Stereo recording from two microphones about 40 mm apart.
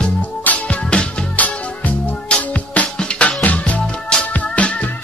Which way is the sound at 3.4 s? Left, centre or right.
Left.